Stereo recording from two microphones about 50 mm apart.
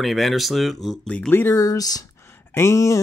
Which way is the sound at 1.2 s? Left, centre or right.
Left.